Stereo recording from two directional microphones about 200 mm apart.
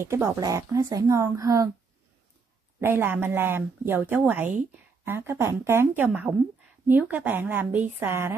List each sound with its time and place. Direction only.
0.0 s speech: 15° right (ahead or behind)
2.8 s speech: 10° right (ahead or behind)